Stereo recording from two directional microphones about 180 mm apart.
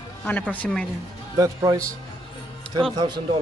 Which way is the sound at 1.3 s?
20° right (ahead or behind).